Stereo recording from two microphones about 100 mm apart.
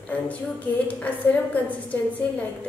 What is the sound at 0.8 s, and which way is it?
A woman's voice, 15° left (ahead or behind).